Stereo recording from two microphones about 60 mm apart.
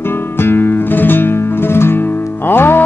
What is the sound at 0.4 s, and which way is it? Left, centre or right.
Music, left.